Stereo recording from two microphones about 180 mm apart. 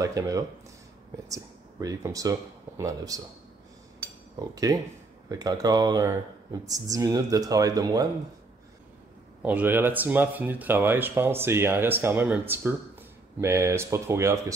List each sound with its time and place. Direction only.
0.0 s speech: 20° right (ahead or behind)
4.0 s cutlery: 20° right (ahead or behind)
5.3 s speech: 20° right (ahead or behind)
9.4 s speech: 10° right (ahead or behind)